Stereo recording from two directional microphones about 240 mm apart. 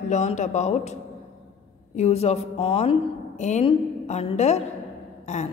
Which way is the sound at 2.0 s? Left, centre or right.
Left.